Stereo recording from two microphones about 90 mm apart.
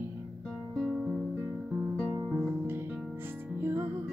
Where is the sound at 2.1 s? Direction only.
25° right (ahead or behind).